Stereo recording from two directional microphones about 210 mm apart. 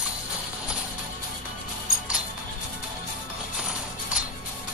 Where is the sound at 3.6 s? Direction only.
5° right (ahead or behind).